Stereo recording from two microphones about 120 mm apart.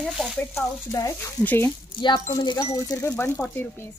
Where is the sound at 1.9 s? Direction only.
40° left (ahead or behind).